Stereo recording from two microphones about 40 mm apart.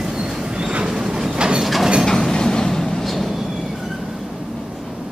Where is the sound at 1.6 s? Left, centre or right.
Centre.